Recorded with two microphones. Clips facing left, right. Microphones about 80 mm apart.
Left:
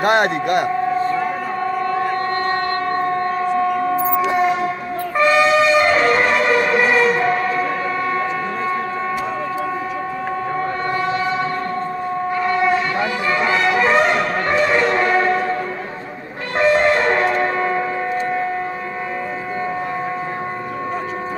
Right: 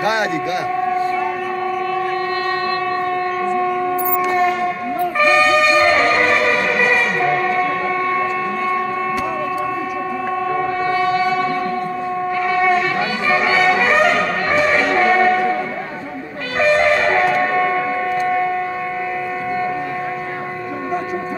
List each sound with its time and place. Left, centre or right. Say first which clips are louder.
0.0 s speech: left 2 dB; left
3.9 s shofar: even; centre
5.2 s a sound: left 1 dB; centre
7.2 s music: right 1 dB; centre
12.4 s shofar: right 1 dB; centre
13.4 s music: right 1 dB; centre
13.8 s brass instrument: right 1 dB; centre
16.5 s shofar: even; centre